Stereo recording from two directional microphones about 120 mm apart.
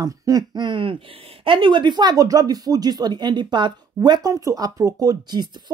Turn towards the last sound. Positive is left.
turn(degrees=-35)  # may be behind; listen again after turning